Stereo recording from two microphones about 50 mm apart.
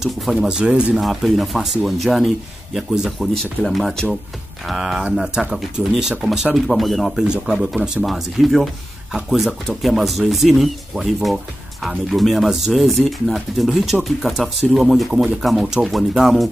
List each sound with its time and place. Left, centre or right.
0.0 s speech: centre
0.5 s speech: centre
0.9 s speech: centre
3.6 s speech: centre
4.6 s speech: centre
7.2 s speech: centre
8.0 s speech: centre